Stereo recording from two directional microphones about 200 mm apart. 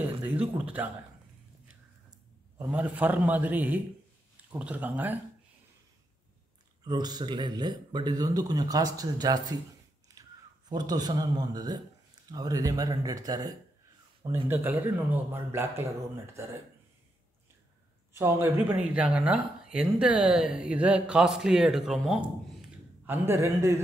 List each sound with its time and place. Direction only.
0.0 s speech: 5° right (ahead or behind)
2.0 s a sound: 20° right (ahead or behind)
2.7 s speech: 10° right (ahead or behind)
6.8 s speech: 20° right (ahead or behind)
10.2 s a sound: 15° right (ahead or behind)
10.7 s speech: 20° right (ahead or behind)
18.1 s speech: 10° right (ahead or behind)
23.0 s speech: 10° right (ahead or behind)